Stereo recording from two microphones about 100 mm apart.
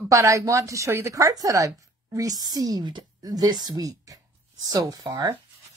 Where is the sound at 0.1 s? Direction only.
30° right (ahead or behind).